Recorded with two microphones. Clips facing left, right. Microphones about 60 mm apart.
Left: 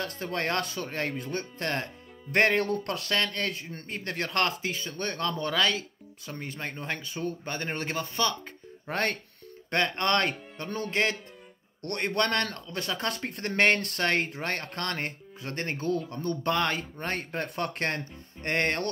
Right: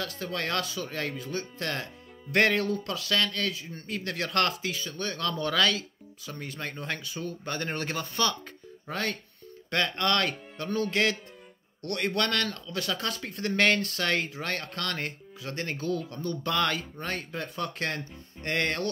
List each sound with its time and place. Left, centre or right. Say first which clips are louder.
0.0 s speech: left 2 dB; left
1.6 s speech: left 2 dB; left
2.6 s speech: left 1 dB; left
8.8 s speech: left 3 dB; left
9.7 s speech: left 1 dB; left
17.0 s speech: left 2 dB; left